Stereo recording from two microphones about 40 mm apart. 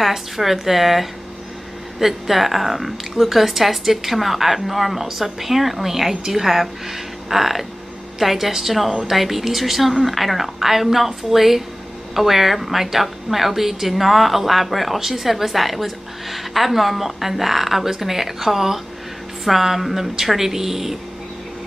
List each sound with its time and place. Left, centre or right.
0.0 s a woman's voice: centre